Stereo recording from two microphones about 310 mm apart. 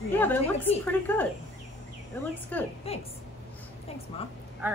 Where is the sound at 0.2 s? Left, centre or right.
Centre.